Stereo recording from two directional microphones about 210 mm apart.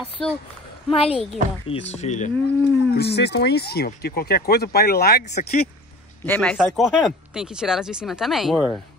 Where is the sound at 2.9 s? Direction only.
50° left (ahead or behind).